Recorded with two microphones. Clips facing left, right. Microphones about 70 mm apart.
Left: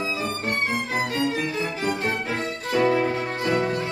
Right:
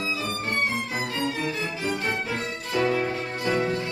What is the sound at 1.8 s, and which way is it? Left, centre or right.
Music, left.